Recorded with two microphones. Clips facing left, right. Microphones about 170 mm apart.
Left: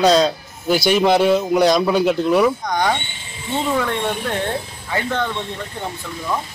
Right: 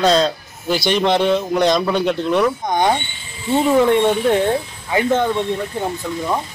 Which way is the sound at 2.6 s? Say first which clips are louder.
Right 3 dB; 25° right (ahead or behind).